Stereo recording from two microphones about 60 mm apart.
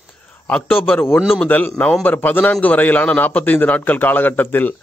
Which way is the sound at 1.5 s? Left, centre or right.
Left.